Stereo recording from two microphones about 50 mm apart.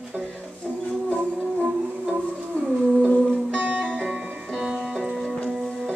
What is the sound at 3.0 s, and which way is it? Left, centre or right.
Music, left.